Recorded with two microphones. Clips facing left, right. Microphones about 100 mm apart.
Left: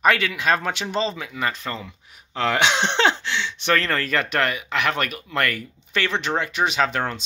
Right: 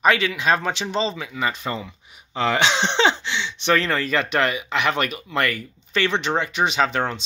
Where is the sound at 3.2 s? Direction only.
10° right (ahead or behind).